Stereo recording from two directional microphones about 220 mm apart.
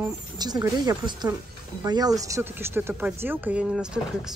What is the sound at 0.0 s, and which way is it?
Speech, 20° right (ahead or behind).